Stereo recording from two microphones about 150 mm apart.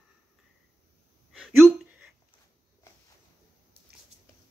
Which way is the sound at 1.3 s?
5° right (ahead or behind).